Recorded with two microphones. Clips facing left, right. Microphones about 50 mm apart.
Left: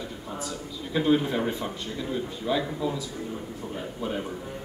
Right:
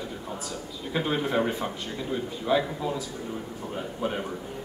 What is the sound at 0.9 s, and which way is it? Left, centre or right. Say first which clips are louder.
A man's voice: left 3 dB; centre.